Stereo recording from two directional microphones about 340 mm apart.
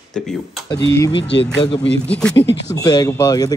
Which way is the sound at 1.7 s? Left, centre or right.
Left.